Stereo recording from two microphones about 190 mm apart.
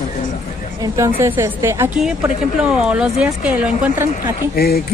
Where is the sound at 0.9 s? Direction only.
15° right (ahead or behind).